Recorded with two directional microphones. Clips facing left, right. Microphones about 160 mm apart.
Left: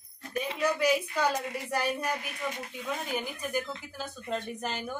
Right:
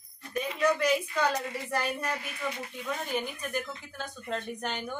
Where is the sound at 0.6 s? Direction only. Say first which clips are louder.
Right 1 dB; 10° left (ahead or behind).